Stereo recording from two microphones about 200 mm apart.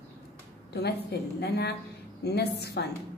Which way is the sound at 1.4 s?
55° left (ahead or behind).